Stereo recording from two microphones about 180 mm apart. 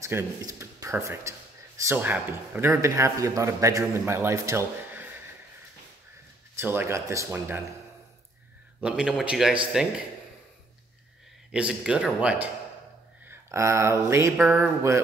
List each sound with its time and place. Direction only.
0.0 s a man's voice: 15° right (ahead or behind)
6.6 s a man's voice: 10° right (ahead or behind)
8.8 s speech: 5° right (ahead or behind)
11.5 s speech: 5° right (ahead or behind)
13.3 s mantra: 15° right (ahead or behind)
14.6 s a man's voice: 15° right (ahead or behind)